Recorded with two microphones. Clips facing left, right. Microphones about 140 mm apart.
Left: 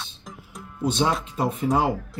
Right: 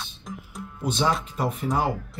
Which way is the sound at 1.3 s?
25° left (ahead or behind).